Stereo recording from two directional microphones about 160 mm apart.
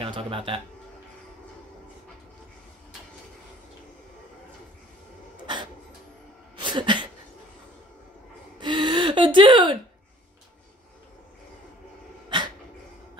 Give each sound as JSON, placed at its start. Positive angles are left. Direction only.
{"t": 0.0, "sound": "speech", "side_deg": -35}
{"t": 6.6, "sound": "a sound", "side_deg": -30}
{"t": 8.5, "sound": "gasp", "side_deg": -25}
{"t": 12.3, "sound": "dog", "side_deg": -30}